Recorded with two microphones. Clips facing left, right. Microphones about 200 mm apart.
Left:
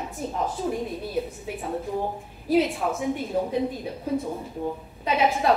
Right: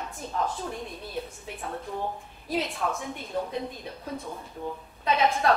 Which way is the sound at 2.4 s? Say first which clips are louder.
Left 7 dB; 5° left (ahead or behind).